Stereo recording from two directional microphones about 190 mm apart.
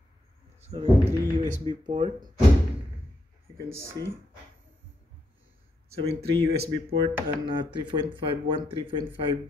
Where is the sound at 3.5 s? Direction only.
15° right (ahead or behind).